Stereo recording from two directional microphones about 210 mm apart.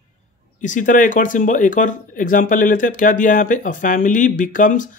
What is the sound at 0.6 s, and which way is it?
Speech, 35° left (ahead or behind).